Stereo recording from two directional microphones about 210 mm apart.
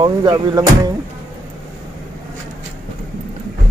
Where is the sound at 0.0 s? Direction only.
20° right (ahead or behind).